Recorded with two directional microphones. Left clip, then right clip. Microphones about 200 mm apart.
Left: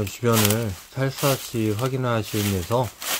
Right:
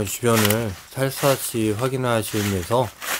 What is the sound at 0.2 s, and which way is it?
Speech, 40° left (ahead or behind).